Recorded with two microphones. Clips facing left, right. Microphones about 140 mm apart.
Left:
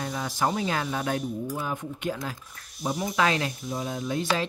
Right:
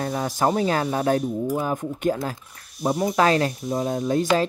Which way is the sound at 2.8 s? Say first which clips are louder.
Right 7 dB; 45° right (ahead or behind).